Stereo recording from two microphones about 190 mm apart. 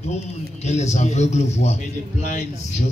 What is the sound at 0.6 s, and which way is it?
A man's voice, 35° left (ahead or behind).